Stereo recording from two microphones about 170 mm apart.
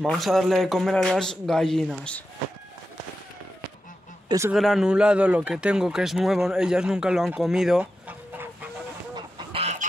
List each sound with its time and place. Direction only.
0.0 s speech: centre (ahead or behind)
4.5 s speech: centre (ahead or behind)
9.1 s fowl: 35° right (ahead or behind)